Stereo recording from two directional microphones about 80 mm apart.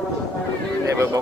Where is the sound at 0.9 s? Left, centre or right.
Right.